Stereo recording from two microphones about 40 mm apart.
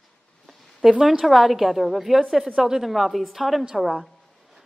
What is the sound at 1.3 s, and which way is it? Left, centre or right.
A woman's voice, centre.